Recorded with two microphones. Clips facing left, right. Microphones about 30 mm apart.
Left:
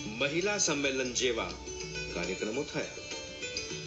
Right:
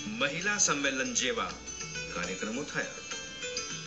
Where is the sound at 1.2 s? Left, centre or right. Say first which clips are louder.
Left 2 dB; centre.